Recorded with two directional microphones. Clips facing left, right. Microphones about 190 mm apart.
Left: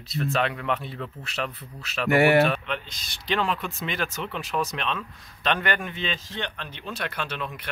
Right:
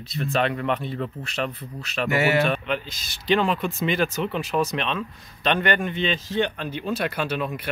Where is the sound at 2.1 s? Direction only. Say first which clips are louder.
Left 3 dB; 55° left (ahead or behind).